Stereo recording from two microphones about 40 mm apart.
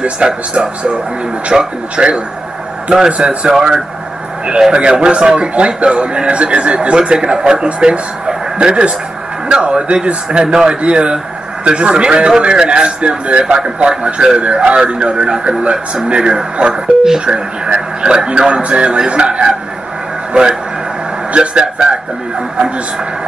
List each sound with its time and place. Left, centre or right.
0.0 s a man's voice: right